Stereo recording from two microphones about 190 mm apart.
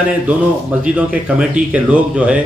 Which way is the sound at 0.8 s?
5° right (ahead or behind).